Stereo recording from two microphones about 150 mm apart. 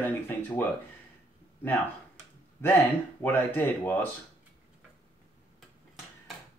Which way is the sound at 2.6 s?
15° left (ahead or behind).